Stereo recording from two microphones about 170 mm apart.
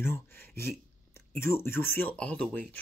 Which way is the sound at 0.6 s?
15° left (ahead or behind).